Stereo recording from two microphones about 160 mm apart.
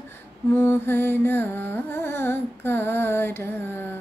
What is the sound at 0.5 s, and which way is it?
Carnatic music, 15° left (ahead or behind).